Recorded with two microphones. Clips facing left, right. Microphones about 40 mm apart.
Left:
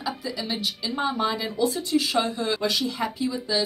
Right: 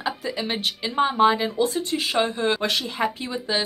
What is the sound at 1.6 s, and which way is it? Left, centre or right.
A woman's voice, right.